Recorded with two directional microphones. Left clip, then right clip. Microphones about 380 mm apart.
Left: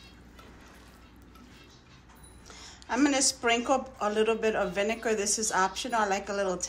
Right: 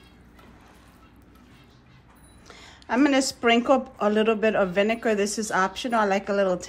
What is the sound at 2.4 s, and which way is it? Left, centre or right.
A woman's voice, right.